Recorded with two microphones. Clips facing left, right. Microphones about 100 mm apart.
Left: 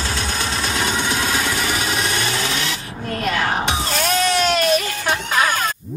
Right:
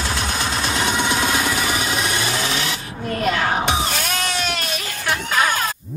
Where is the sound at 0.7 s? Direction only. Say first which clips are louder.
Right 2 dB; 25° right (ahead or behind).